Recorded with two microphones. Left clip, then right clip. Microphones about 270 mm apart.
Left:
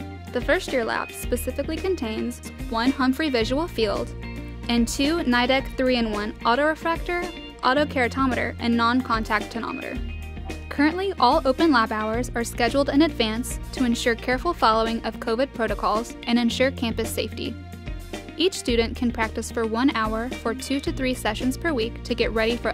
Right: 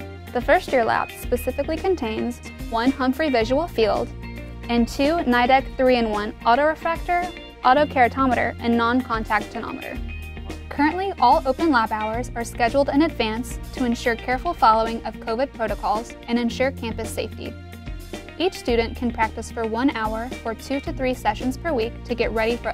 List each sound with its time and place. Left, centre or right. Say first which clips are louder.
0.3 s speech: right 4 dB; right
10.8 s speech: right 1 dB; right